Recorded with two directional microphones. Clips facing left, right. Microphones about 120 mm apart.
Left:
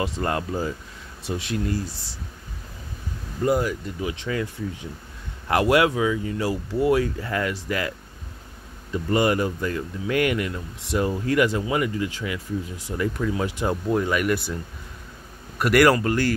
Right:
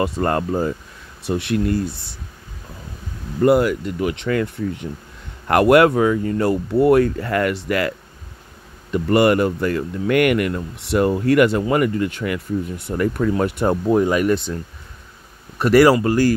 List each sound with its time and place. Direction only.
0.0 s speech: 50° right (ahead or behind)
3.4 s speech: 70° right (ahead or behind)
8.9 s speech: 65° right (ahead or behind)
13.8 s speech: 35° right (ahead or behind)
15.8 s speech: 25° right (ahead or behind)